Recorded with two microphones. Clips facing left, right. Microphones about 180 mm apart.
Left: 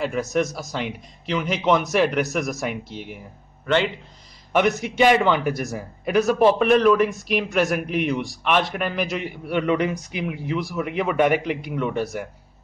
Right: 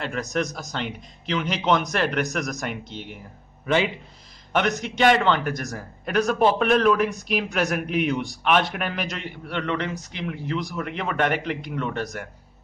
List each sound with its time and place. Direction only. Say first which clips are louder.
0.0 s a man's voice: left 4 dB; 5° left (ahead or behind)
3.6 s speech: left 1 dB; 10° right (ahead or behind)
4.5 s a man's voice: left 4 dB; 5° left (ahead or behind)